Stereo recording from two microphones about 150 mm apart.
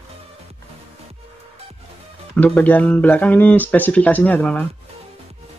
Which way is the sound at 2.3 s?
10° left (ahead or behind).